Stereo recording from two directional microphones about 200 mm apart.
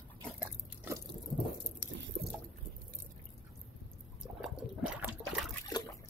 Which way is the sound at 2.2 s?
65° right (ahead or behind).